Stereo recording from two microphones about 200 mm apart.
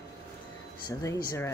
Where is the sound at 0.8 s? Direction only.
20° left (ahead or behind).